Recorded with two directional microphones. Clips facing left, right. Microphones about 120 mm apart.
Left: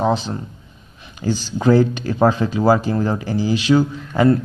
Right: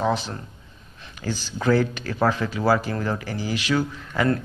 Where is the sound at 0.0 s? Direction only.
20° left (ahead or behind).